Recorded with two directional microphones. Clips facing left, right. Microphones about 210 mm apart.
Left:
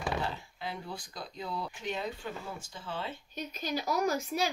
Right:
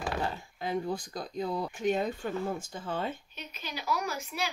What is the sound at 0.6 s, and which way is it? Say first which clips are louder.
Speech: right 8 dB; 45° right (ahead or behind).